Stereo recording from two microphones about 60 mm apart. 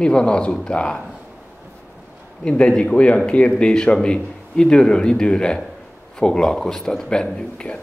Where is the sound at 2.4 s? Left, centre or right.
Centre.